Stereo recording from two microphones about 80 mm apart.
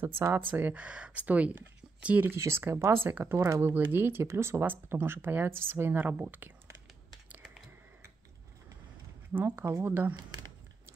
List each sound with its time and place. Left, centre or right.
0.0 s speech: right
0.7 s speech: centre
2.3 s speech: right
3.3 s speech: right
3.7 s speech: right
9.3 s speech: right
9.7 s speech: right